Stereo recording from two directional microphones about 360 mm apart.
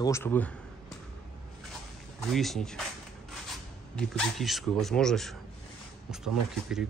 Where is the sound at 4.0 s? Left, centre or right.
Centre.